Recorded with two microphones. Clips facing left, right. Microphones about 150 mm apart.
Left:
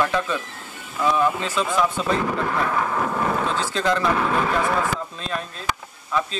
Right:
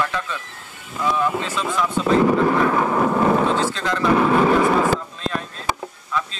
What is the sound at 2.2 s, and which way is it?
Vehicle, 30° right (ahead or behind).